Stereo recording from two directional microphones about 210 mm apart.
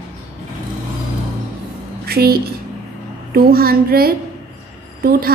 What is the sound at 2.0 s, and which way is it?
A woman's voice, 45° right (ahead or behind).